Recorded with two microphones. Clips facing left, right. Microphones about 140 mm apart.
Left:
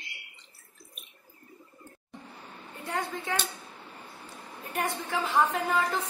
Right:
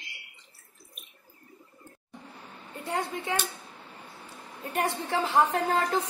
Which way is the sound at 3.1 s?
10° right (ahead or behind).